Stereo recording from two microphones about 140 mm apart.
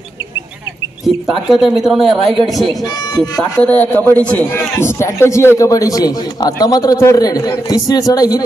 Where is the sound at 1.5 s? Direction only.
Centre (ahead or behind).